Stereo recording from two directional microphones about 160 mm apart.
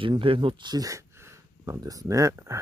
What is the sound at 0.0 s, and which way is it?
Speech, 35° right (ahead or behind).